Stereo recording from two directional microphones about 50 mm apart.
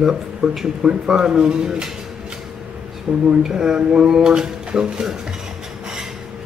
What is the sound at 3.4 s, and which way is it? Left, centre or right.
Speech, centre.